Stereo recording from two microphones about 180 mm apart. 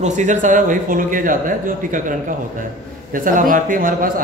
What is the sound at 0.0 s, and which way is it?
A man's voice, 40° right (ahead or behind).